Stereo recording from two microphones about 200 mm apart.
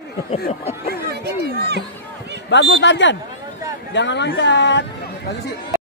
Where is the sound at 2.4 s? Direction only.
60° left (ahead or behind).